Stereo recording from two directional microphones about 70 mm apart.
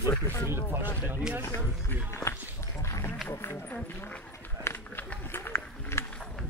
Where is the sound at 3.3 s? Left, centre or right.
Left.